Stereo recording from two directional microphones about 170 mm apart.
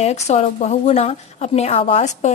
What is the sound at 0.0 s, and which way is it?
A woman's voice, 40° left (ahead or behind).